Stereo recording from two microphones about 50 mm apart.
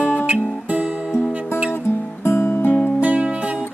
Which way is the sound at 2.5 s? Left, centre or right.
Left.